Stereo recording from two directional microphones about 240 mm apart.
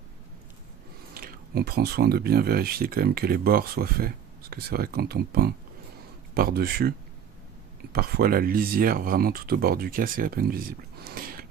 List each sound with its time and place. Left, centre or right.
1.1 s speech: right
7.9 s speech: right